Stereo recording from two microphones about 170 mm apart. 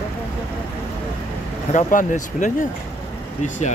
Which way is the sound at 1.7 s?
50° left (ahead or behind).